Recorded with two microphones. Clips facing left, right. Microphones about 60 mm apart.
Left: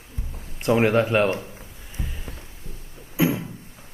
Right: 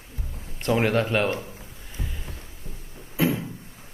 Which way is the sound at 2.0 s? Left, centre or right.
Centre.